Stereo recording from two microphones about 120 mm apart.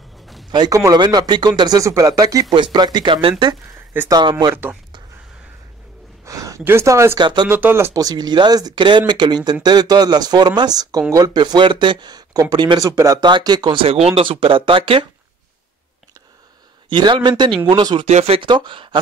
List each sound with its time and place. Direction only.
0.5 s speech: 30° right (ahead or behind)
6.2 s a sound: 30° right (ahead or behind)
6.6 s speech: 20° right (ahead or behind)
7.2 s speech: 40° right (ahead or behind)
7.4 s speech: 20° right (ahead or behind)
8.0 s speech: 35° right (ahead or behind)
12.9 s speech: 25° right (ahead or behind)
13.2 s speech: 35° right (ahead or behind)
16.9 s speech: 40° right (ahead or behind)
18.0 s speech: 60° right (ahead or behind); by 18.9 s 40° right (ahead or behind)